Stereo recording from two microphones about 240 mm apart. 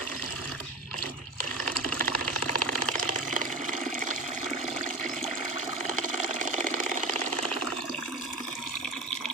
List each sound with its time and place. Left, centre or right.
2.0 s sewing machine: left
6.6 s engine: right